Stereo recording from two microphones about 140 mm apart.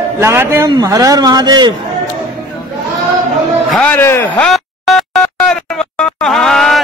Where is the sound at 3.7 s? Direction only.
10° left (ahead or behind).